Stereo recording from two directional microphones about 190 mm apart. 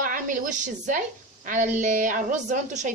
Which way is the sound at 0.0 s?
45° right (ahead or behind).